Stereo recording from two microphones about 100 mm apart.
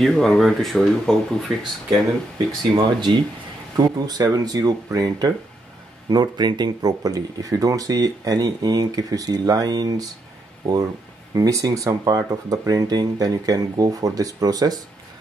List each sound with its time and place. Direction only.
0.0 s speech: 5° left (ahead or behind)
2.7 s speech: 50° right (ahead or behind)